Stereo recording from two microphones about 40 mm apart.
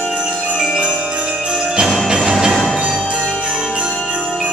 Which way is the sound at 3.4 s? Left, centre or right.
Centre.